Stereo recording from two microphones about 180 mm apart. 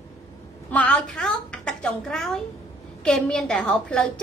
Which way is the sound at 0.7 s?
5° left (ahead or behind).